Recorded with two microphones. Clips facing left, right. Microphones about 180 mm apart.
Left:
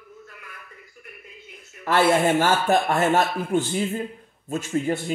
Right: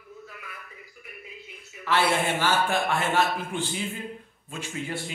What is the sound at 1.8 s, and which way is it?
Speech, 45° left (ahead or behind).